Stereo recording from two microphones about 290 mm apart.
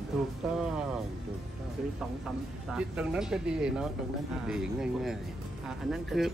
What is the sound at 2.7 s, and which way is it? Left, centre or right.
Speech, centre.